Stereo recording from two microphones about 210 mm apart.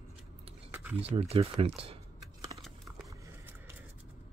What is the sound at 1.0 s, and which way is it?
Speech, 30° right (ahead or behind).